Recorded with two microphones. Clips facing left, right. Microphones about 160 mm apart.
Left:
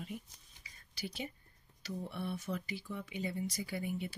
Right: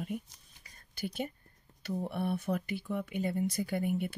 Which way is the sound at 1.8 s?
55° right (ahead or behind).